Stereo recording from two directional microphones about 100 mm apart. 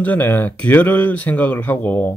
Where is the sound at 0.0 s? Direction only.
15° left (ahead or behind).